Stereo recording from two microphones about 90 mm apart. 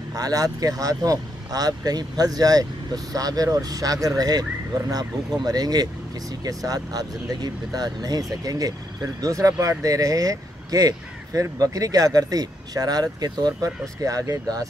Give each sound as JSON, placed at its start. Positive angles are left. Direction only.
{"t": 0.1, "sound": "speech", "side_deg": -40}